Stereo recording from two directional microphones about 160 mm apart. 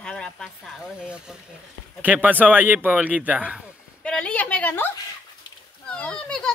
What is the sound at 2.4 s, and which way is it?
Speech, 10° right (ahead or behind).